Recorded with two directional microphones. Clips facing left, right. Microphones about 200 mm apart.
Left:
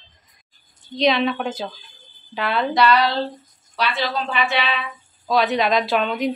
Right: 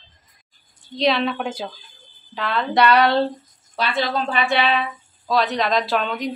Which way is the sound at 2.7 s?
60° right (ahead or behind).